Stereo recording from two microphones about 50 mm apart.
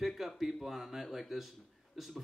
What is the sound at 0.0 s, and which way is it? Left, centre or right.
Speech, centre.